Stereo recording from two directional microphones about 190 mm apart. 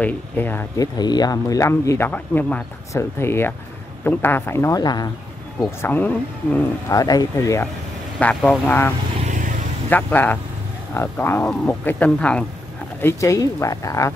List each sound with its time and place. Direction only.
0.0 s speech: 10° left (ahead or behind)